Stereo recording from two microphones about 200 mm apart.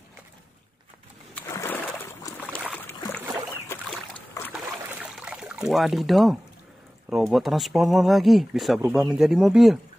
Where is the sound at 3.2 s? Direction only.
20° right (ahead or behind).